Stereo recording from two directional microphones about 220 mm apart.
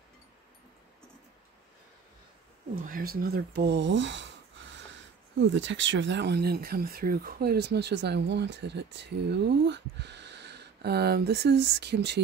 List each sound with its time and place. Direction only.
2.8 s speech: 40° right (ahead or behind)